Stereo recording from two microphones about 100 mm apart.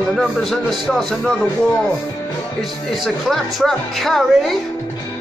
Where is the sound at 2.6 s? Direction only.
Centre (ahead or behind).